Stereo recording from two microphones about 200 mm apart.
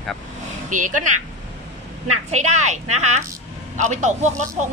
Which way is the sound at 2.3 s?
35° right (ahead or behind).